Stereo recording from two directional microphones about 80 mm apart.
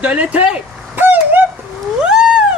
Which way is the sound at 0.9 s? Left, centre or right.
Right.